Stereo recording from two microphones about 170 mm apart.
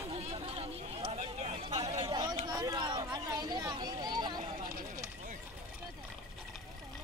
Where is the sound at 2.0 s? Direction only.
25° right (ahead or behind).